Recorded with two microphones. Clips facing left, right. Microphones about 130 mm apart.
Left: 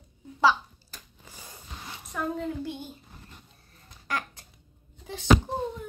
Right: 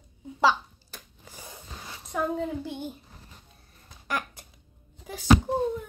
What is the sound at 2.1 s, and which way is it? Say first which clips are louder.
Speech: right 3 dB; 10° right (ahead or behind).